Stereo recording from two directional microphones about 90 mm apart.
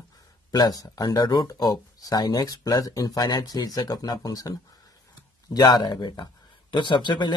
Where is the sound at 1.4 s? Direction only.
45° left (ahead or behind).